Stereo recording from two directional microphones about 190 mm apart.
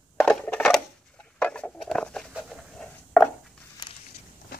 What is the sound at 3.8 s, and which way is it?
Walk, 25° left (ahead or behind).